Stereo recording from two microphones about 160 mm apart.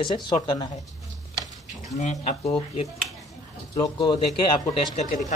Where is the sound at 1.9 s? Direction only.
45° left (ahead or behind).